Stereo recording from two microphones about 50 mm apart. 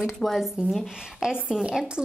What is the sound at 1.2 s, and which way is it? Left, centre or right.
Speech, centre.